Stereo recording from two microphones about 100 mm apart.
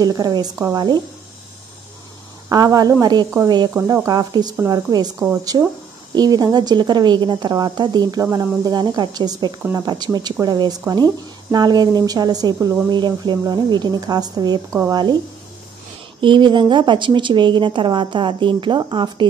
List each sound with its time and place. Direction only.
0.0 s a woman's voice: 40° right (ahead or behind)
2.5 s a woman's voice: 40° right (ahead or behind)
3.7 s a woman's voice: 30° right (ahead or behind)
12.9 s a woman's voice: 50° right (ahead or behind)
16.2 s a woman's voice: 55° right (ahead or behind)